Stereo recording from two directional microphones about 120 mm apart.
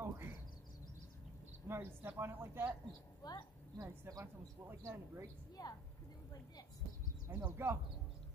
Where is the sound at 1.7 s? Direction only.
20° right (ahead or behind).